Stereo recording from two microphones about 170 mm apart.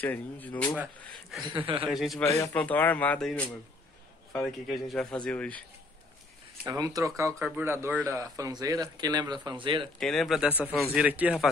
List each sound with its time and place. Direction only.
0.0 s a man's voice: 10° left (ahead or behind)
1.9 s a man's voice: centre (ahead or behind)
2.2 s a man's voice: 15° left (ahead or behind)
6.6 s a man's voice: 20° right (ahead or behind)
9.9 s a man's voice: centre (ahead or behind)